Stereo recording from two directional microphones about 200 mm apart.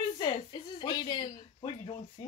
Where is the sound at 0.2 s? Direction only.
20° left (ahead or behind).